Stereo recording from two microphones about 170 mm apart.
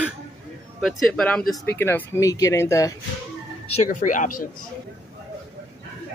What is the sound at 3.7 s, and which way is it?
Speech, 45° left (ahead or behind).